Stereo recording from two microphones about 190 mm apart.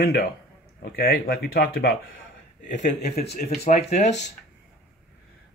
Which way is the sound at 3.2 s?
35° left (ahead or behind).